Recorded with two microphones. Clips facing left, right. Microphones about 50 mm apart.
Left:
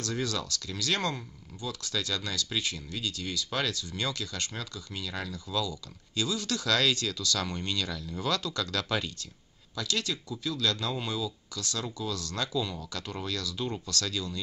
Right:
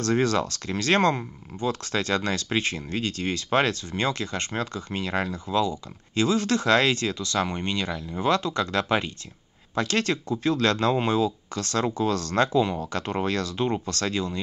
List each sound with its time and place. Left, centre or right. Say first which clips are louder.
0.0 s speech: right 10 dB; right
9.8 s speech: right 8 dB; right